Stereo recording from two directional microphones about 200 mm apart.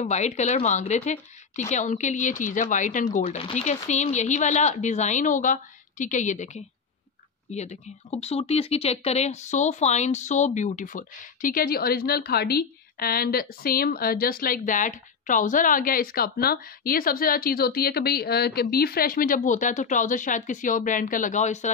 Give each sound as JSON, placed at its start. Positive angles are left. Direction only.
{"t": 0.0, "sound": "speech", "side_deg": 35}